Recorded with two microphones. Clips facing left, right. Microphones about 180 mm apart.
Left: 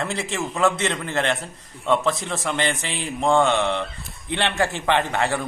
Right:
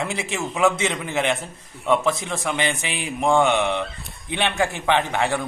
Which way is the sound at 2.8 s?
15° right (ahead or behind).